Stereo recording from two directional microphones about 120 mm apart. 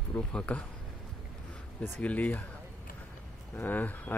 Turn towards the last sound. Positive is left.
turn(degrees=15)  # may be behind; listen again after turning